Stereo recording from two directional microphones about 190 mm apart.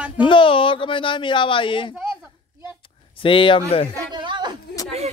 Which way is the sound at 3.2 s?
25° left (ahead or behind).